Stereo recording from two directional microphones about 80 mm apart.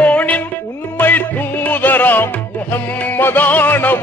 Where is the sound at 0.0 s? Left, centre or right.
Centre.